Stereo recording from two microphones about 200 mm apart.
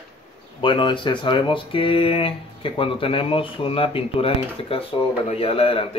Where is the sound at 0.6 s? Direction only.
25° left (ahead or behind).